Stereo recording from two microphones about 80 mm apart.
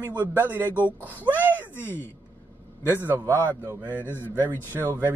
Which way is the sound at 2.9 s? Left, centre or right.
Right.